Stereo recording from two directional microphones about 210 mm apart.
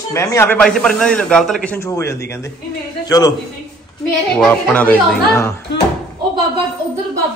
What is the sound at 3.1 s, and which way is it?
Speech, 20° left (ahead or behind).